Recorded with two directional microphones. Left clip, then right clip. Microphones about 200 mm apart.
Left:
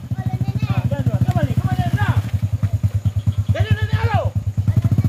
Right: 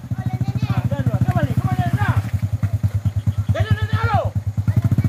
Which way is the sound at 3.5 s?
10° left (ahead or behind).